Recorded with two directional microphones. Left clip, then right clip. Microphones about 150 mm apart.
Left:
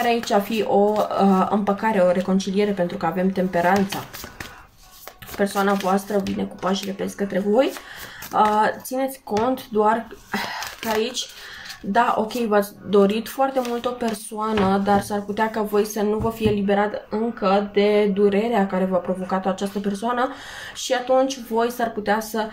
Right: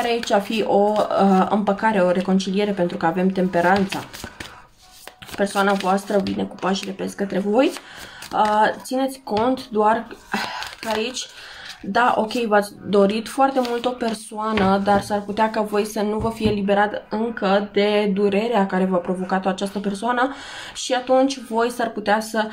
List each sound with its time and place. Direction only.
0.0 s speech: 30° right (ahead or behind)
5.4 s speech: 25° right (ahead or behind)